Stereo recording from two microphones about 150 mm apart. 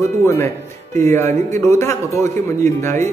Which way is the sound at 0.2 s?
20° left (ahead or behind).